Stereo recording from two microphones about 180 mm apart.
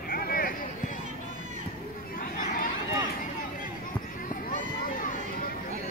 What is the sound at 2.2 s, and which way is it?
Chatter, 50° left (ahead or behind).